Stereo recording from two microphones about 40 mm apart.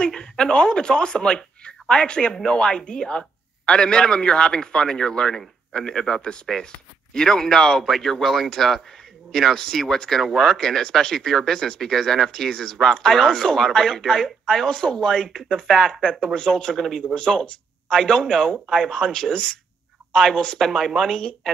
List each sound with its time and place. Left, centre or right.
0.0 s a man's voice: left
10.2 s speech: centre
10.8 s speech: centre
14.7 s a man's voice: left
20.6 s speech: centre